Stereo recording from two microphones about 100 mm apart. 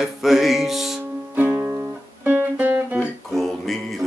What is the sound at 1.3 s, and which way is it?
Music, 20° right (ahead or behind).